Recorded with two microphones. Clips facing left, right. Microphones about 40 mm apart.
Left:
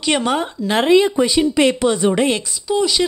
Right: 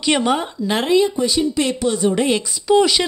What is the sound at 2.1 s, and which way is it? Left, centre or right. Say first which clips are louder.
Speech: left 1 dB; centre.